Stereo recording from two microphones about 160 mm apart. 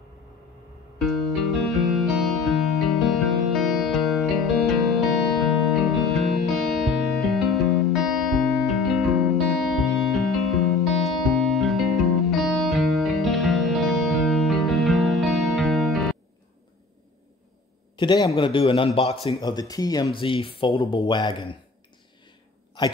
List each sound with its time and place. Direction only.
0.9 s music: centre (ahead or behind)
17.9 s a man's voice: 25° left (ahead or behind)
19.7 s speech: 25° left (ahead or behind)